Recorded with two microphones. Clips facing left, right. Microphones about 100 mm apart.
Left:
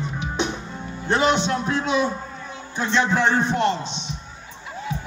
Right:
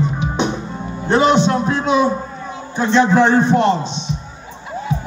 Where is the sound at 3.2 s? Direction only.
10° right (ahead or behind).